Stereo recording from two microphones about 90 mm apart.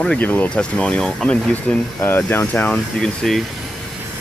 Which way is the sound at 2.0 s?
25° left (ahead or behind).